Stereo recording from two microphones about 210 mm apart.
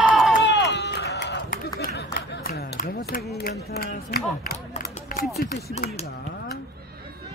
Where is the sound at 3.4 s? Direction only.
45° left (ahead or behind).